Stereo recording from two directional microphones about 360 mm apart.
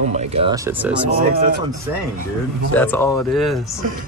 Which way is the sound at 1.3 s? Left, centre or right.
Right.